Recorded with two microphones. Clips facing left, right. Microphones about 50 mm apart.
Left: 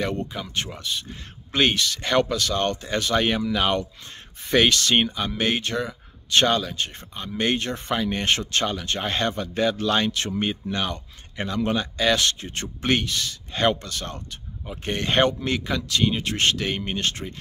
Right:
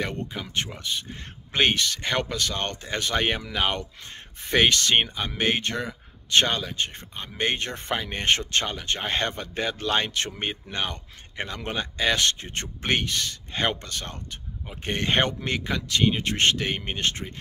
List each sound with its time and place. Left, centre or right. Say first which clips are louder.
0.0 s speech: left 3 dB; right
13.5 s speech: left 5 dB; right